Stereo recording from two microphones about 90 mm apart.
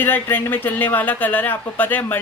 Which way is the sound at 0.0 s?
20° left (ahead or behind).